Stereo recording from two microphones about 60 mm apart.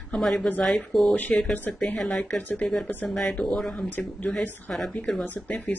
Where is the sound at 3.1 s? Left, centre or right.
Centre.